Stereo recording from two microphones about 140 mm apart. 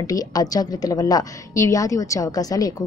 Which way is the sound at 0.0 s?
25° left (ahead or behind).